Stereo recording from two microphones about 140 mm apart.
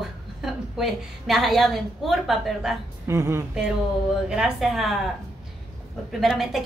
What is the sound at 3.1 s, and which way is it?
Speech, 20° right (ahead or behind).